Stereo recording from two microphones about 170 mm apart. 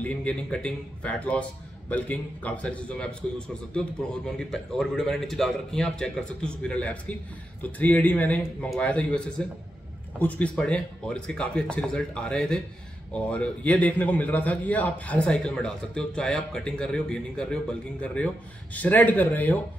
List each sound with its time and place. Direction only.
0.0 s a man's voice: 10° left (ahead or behind)